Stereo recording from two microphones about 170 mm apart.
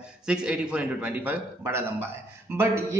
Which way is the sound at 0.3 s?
5° right (ahead or behind).